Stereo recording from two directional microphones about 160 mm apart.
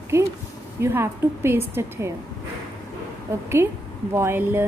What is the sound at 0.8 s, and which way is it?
A woman's voice, 15° right (ahead or behind).